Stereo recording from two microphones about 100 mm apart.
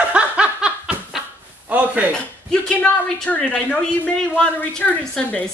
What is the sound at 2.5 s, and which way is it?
Speech, 10° left (ahead or behind).